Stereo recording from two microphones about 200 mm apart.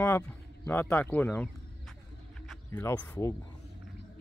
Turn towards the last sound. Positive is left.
turn(degrees=10)  # may be behind; listen again after turning